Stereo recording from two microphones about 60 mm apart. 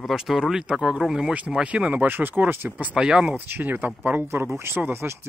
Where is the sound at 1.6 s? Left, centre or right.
Right.